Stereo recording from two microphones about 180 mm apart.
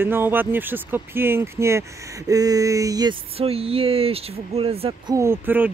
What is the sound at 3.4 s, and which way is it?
Speech, 35° right (ahead or behind).